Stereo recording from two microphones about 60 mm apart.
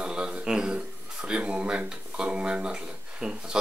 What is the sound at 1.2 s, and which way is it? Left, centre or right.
Speech, centre.